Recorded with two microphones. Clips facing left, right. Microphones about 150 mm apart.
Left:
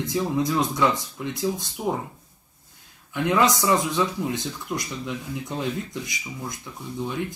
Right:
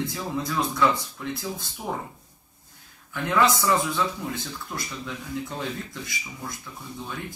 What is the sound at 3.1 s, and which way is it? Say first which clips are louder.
Speech: left 2 dB; 20° left (ahead or behind).